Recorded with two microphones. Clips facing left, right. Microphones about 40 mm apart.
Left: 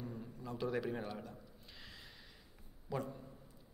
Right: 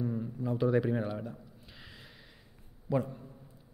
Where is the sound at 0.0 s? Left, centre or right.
Right.